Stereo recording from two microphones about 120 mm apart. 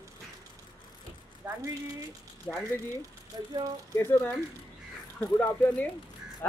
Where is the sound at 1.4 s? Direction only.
20° right (ahead or behind).